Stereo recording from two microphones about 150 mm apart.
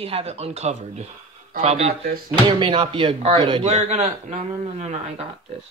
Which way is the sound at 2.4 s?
35° right (ahead or behind).